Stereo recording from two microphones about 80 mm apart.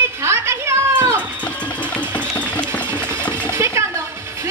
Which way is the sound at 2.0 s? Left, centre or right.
Centre.